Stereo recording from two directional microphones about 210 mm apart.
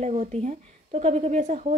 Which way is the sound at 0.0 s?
30° right (ahead or behind).